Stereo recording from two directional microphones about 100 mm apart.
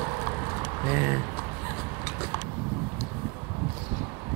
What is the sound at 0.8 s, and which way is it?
Speech, 25° right (ahead or behind).